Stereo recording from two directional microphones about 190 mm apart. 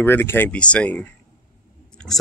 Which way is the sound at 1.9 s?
Centre (ahead or behind).